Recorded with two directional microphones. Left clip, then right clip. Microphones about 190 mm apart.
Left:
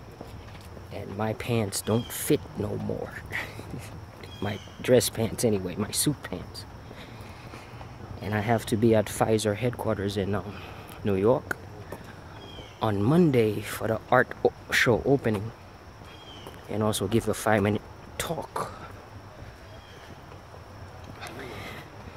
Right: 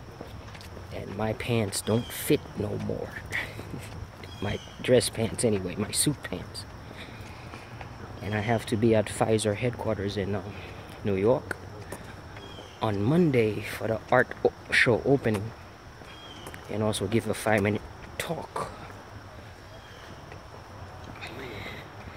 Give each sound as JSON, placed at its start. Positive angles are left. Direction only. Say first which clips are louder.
{"t": 0.9, "sound": "speech", "louder": "even", "side_deg": 10}
{"t": 8.2, "sound": "speech", "louder": "left 2 dB", "side_deg": 15}
{"t": 12.8, "sound": "speech", "louder": "left 2 dB", "side_deg": 20}
{"t": 14.0, "sound": "speech", "louder": "left 1 dB", "side_deg": 5}
{"t": 16.7, "sound": "speech", "louder": "left 1 dB", "side_deg": 15}
{"t": 21.2, "sound": "a sound", "louder": "even", "side_deg": 20}